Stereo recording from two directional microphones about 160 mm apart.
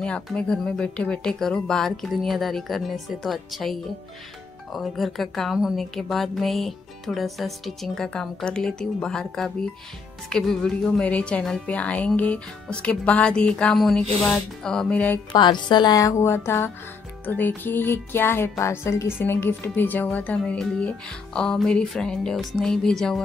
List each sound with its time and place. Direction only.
0.0 s a woman's voice: 5° left (ahead or behind)
4.7 s a woman's voice: centre (ahead or behind)
10.3 s music: 5° left (ahead or behind)
15.3 s a woman's voice: 25° left (ahead or behind)
17.3 s music: 10° left (ahead or behind)